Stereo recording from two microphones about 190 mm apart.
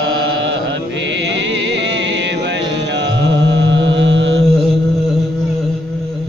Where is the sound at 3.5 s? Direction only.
75° right (ahead or behind).